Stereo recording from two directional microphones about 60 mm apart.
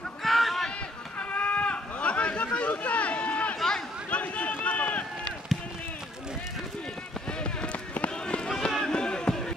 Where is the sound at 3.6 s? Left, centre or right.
Centre.